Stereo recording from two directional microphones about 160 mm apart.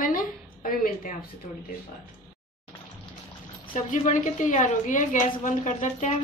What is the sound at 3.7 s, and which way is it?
A woman's voice, 50° left (ahead or behind).